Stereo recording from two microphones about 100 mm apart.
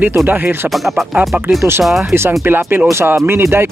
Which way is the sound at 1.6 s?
25° right (ahead or behind).